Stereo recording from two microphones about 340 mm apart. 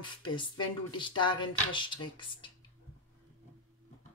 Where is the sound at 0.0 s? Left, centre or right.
Centre.